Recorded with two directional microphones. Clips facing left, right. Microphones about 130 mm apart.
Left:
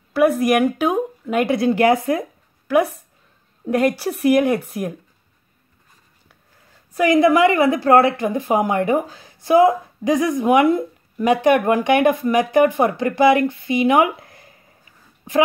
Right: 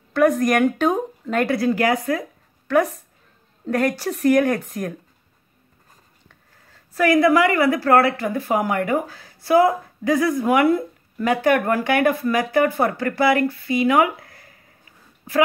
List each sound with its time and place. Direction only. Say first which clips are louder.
0.1 s a woman's voice: left 1 dB; 5° left (ahead or behind); by 2.0 s 25° left (ahead or behind)
3.6 s a woman's voice: left 3 dB; 15° left (ahead or behind)
6.9 s a woman's voice: left 2 dB; 20° left (ahead or behind)